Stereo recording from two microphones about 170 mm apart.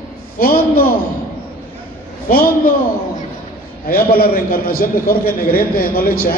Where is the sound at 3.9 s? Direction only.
60° left (ahead or behind).